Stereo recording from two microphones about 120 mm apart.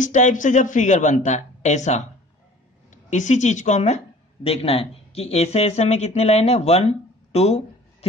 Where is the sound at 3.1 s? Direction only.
90° left.